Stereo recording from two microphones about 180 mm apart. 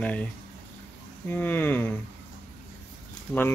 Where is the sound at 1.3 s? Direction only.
10° left (ahead or behind).